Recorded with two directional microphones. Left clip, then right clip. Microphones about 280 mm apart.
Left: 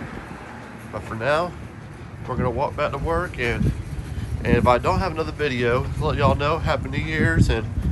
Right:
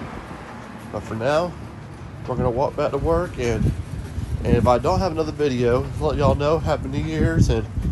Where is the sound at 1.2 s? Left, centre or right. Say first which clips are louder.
Right 1 dB; centre.